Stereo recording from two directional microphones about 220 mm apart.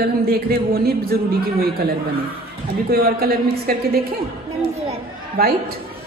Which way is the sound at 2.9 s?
45° right (ahead or behind).